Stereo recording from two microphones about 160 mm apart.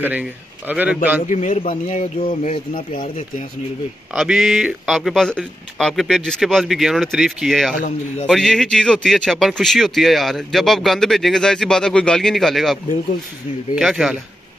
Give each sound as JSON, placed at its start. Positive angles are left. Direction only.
{"t": 0.0, "sound": "a man's voice", "side_deg": -10}
{"t": 1.2, "sound": "speech", "side_deg": 50}
{"t": 4.1, "sound": "speech", "side_deg": -5}
{"t": 13.7, "sound": "speech", "side_deg": -5}